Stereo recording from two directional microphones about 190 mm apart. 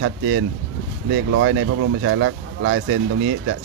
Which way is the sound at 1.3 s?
85° right.